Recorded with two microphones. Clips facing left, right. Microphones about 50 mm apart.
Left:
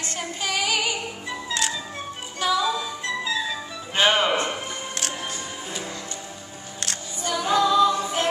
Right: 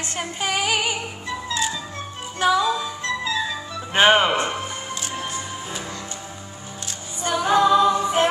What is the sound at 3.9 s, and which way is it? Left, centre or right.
Speech, right.